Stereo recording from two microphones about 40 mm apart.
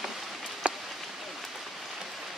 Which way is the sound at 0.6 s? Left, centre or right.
Right.